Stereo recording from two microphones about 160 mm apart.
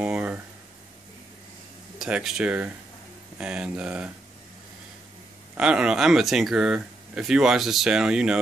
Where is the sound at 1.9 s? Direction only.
5° right (ahead or behind).